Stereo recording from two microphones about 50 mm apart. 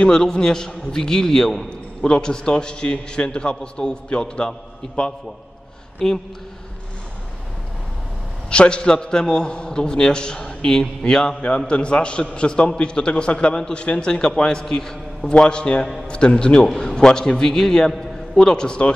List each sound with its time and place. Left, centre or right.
0.0 s a man's voice: centre
8.5 s a man's voice: centre